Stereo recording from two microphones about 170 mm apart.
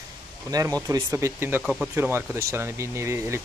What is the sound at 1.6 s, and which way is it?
Speech, centre (ahead or behind).